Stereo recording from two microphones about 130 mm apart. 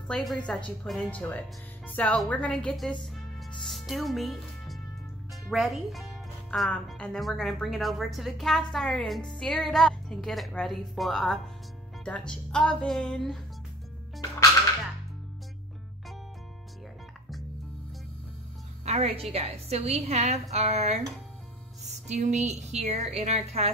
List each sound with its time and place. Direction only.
0.1 s a woman's voice: 5° left (ahead or behind)
3.3 s music: centre (ahead or behind)
5.5 s speech: centre (ahead or behind)
18.9 s a woman's voice: 50° right (ahead or behind)